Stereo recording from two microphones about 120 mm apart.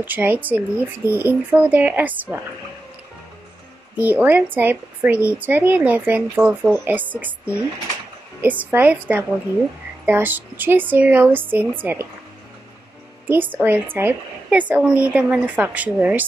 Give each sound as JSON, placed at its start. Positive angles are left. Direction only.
{"t": 0.0, "sound": "speech", "side_deg": -15}
{"t": 3.9, "sound": "speech", "side_deg": -15}
{"t": 13.3, "sound": "speech", "side_deg": -15}